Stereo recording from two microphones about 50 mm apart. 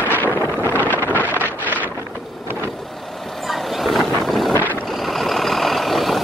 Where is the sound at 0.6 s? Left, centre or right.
Left.